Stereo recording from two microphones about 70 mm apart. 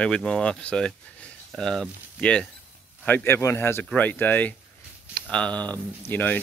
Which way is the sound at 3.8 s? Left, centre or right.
Centre.